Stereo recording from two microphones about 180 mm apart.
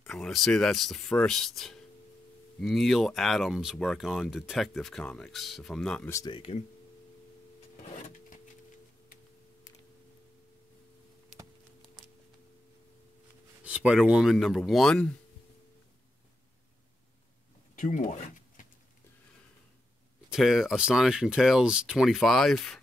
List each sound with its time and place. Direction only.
0.0 s speech: centre (ahead or behind)
6.0 s speech: 20° left (ahead or behind)
13.7 s speech: 5° right (ahead or behind)
17.7 s a sound: 45° left (ahead or behind)
20.3 s speech: centre (ahead or behind)